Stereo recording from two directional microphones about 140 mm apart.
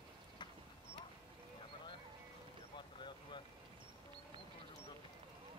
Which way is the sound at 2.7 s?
35° left (ahead or behind).